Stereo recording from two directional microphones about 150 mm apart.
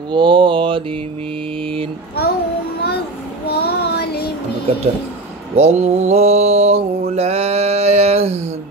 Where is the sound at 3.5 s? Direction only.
90° left.